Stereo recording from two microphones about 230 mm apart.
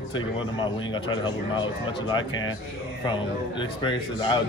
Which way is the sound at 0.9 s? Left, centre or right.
Centre.